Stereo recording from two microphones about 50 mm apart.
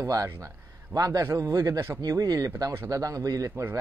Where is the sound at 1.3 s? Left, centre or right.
Right.